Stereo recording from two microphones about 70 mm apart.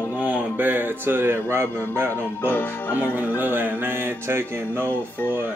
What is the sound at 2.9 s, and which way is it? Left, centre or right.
Music, right.